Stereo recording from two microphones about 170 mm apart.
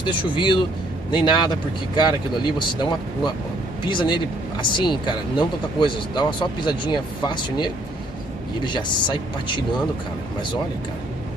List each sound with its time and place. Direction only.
0.0 s speech: 30° left (ahead or behind)